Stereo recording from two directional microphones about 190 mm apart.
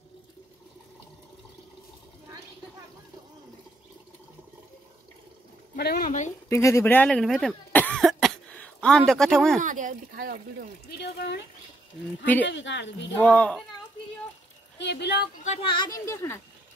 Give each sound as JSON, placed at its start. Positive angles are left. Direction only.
{"t": 5.8, "sound": "speech", "side_deg": 55}
{"t": 6.5, "sound": "cough", "side_deg": 15}
{"t": 9.6, "sound": "speech", "side_deg": -40}
{"t": 10.9, "sound": "speech", "side_deg": 55}
{"t": 12.4, "sound": "speech", "side_deg": 70}
{"t": 13.2, "sound": "speech", "side_deg": 5}
{"t": 14.8, "sound": "speech", "side_deg": 65}
{"t": 15.4, "sound": "speech", "side_deg": 30}